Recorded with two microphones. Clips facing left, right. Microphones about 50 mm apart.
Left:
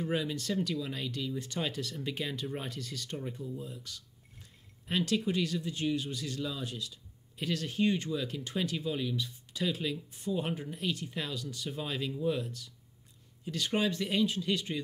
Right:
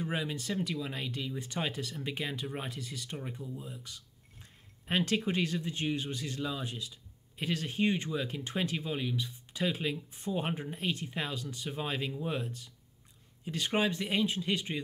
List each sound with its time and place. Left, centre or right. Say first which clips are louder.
0.0 s speech: left 2 dB; centre